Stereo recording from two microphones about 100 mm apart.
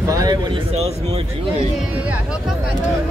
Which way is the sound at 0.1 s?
35° right (ahead or behind).